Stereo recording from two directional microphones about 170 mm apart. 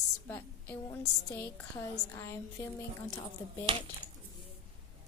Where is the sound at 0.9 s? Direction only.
20° left (ahead or behind).